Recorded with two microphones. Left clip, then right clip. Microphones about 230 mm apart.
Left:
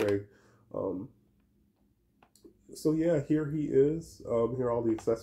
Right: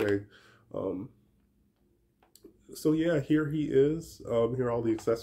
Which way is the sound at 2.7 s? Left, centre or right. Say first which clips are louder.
Right 1 dB; centre.